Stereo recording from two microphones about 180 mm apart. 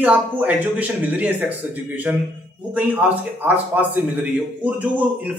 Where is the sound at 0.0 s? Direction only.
10° right (ahead or behind).